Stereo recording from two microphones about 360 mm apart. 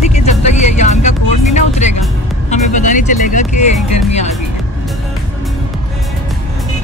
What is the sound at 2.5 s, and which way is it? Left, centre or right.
Music, left.